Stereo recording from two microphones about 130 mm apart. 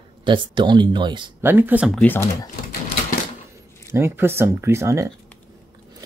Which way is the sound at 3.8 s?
20° right (ahead or behind).